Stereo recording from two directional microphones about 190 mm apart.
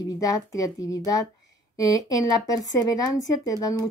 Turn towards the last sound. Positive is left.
turn(degrees=20)  # may be behind; listen again after turning